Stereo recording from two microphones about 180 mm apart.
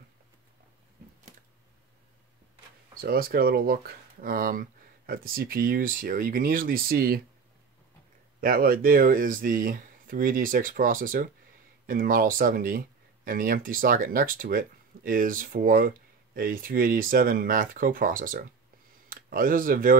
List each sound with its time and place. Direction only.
3.0 s speech: 55° right (ahead or behind)
8.4 s speech: 55° right (ahead or behind)